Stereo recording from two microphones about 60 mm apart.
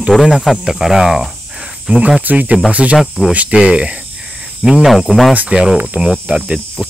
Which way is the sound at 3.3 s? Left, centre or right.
Right.